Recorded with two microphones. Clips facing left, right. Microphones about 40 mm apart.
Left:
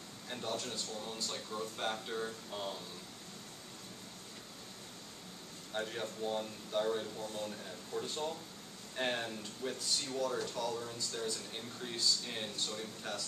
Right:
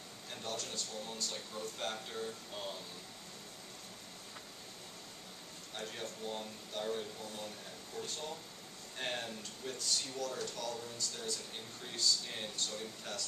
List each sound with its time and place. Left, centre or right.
0.3 s speech: centre
5.8 s speech: centre